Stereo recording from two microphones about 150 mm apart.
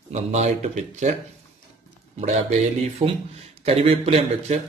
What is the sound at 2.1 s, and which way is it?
A man's voice, 45° right (ahead or behind).